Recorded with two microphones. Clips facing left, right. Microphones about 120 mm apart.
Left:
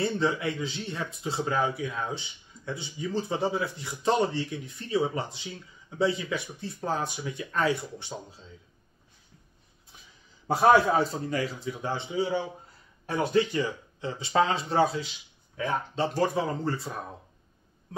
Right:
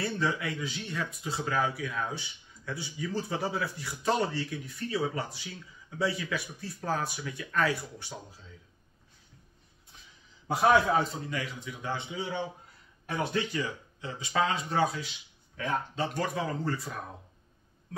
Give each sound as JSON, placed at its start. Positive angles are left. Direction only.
{"t": 0.0, "sound": "speech", "side_deg": 25}
{"t": 10.4, "sound": "a man's voice", "side_deg": 35}